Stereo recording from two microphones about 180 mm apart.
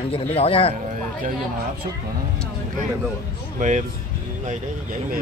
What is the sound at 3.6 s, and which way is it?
Speech, 40° right (ahead or behind).